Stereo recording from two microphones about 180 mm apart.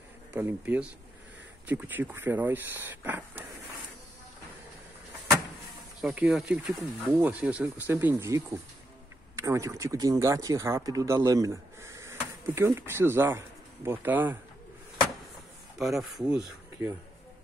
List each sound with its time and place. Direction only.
0.3 s speech: 10° right (ahead or behind)
5.9 s speech: 5° right (ahead or behind)
15.8 s speech: centre (ahead or behind)